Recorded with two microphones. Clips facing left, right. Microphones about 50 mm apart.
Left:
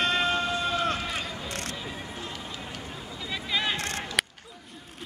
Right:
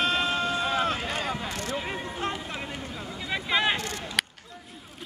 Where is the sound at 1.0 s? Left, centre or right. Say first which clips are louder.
Right 3 dB; right.